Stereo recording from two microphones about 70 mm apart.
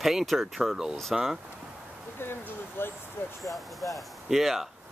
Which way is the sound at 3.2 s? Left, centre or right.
Left.